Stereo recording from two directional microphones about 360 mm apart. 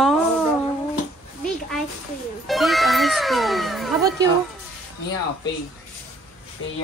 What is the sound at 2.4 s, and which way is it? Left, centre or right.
Speech, centre.